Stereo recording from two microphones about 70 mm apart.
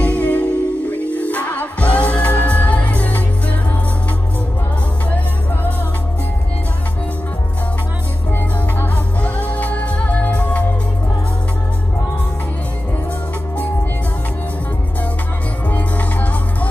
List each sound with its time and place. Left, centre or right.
0.0 s music: left
5.1 s music: left
8.7 s music: left
15.7 s music: left